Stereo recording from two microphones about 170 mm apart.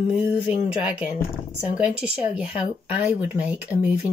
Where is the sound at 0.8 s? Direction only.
10° right (ahead or behind).